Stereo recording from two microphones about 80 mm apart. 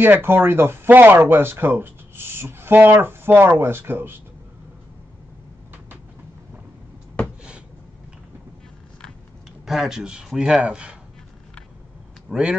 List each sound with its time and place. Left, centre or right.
0.0 s speech: right
9.7 s a man's voice: centre
12.3 s a man's voice: centre